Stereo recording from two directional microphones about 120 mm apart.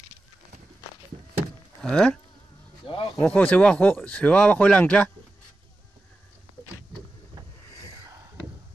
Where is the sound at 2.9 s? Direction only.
45° left (ahead or behind).